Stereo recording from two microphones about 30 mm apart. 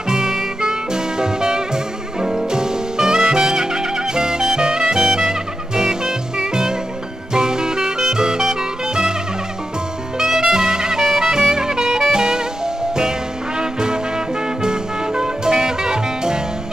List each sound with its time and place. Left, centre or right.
0.1 s music: centre
10.1 s music: centre
11.0 s music: centre
11.2 s music: right
13.6 s music: right